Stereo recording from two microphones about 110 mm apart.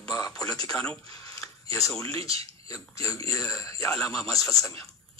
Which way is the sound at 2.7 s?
30° left (ahead or behind).